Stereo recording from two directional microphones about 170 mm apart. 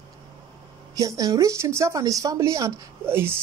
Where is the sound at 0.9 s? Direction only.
20° right (ahead or behind).